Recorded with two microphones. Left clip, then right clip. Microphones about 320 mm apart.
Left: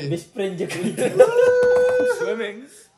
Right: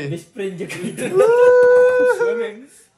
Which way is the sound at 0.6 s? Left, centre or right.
Left.